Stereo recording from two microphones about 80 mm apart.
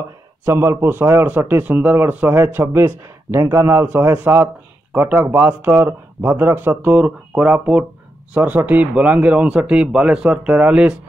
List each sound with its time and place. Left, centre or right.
0.5 s speech: right; by 11.0 s centre